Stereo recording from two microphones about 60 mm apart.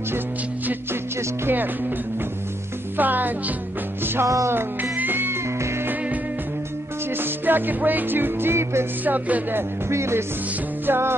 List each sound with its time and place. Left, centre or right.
1.4 s music: right
3.0 s music: right
7.2 s music: right
9.0 s music: right